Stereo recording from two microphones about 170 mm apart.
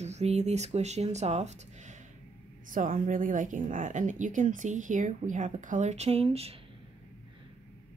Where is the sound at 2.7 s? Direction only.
50° right (ahead or behind); by 6.5 s 35° right (ahead or behind).